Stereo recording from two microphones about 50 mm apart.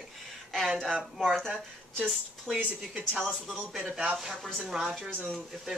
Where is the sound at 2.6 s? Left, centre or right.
Right.